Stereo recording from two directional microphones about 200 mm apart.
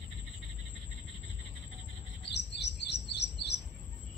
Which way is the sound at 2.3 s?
60° left (ahead or behind).